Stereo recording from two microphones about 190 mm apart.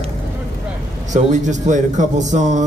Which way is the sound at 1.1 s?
40° right (ahead or behind).